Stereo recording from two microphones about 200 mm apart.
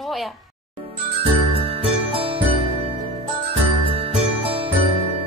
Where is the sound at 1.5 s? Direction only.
30° right (ahead or behind).